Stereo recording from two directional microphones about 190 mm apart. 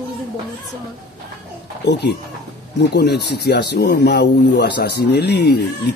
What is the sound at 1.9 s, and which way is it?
Speech, 60° left (ahead or behind).